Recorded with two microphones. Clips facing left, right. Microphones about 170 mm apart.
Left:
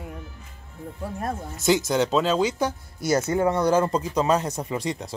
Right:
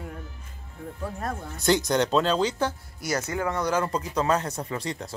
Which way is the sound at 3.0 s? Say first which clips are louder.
Left 6 dB; 25° left (ahead or behind).